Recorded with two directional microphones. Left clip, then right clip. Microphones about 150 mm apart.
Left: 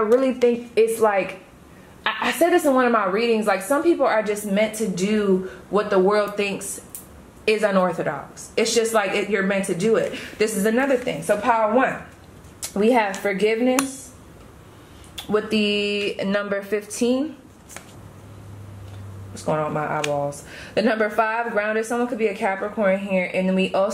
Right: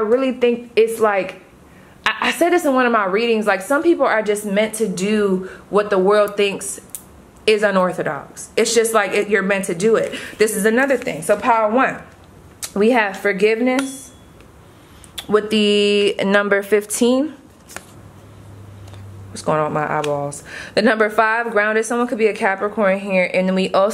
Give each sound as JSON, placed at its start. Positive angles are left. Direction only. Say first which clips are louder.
{"t": 0.1, "sound": "speech", "louder": "right 1 dB", "side_deg": -5}
{"t": 0.7, "sound": "a woman's voice", "louder": "right 3 dB", "side_deg": -25}
{"t": 12.6, "sound": "a woman's voice", "louder": "right 3 dB", "side_deg": -30}
{"t": 15.1, "sound": "a woman's voice", "louder": "right 5 dB", "side_deg": -40}
{"t": 19.3, "sound": "a woman's voice", "louder": "right 5 dB", "side_deg": -40}